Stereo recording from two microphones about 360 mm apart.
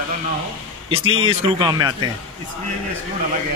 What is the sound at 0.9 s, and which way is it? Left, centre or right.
Speech, centre.